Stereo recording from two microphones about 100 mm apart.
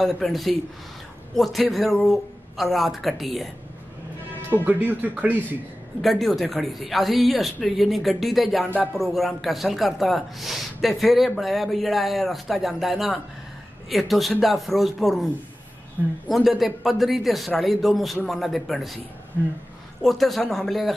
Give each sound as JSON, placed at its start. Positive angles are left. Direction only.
{"t": 0.0, "sound": "speech", "side_deg": 0}
{"t": 4.6, "sound": "speech", "side_deg": -15}
{"t": 5.9, "sound": "speech", "side_deg": 0}
{"t": 16.3, "sound": "speech", "side_deg": 0}
{"t": 20.0, "sound": "speech", "side_deg": 0}